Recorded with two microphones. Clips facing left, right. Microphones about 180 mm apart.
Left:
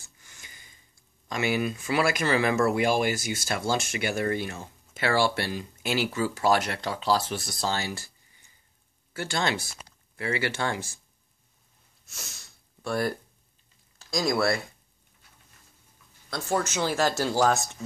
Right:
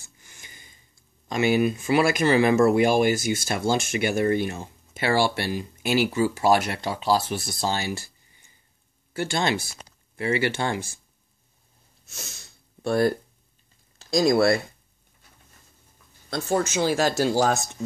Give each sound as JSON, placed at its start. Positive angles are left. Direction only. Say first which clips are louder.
{"t": 1.3, "sound": "speech", "louder": "right 6 dB", "side_deg": -20}
{"t": 9.1, "sound": "speech", "louder": "right 4 dB", "side_deg": -20}
{"t": 12.8, "sound": "speech", "louder": "right 6 dB", "side_deg": -25}
{"t": 16.3, "sound": "speech", "louder": "right 4 dB", "side_deg": -30}
{"t": 16.8, "sound": "speech", "louder": "right 4 dB", "side_deg": -15}